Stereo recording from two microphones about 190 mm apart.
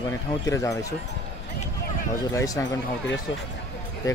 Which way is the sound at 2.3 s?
20° left (ahead or behind).